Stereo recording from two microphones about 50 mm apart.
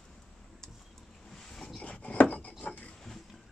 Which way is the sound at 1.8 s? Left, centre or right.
Left.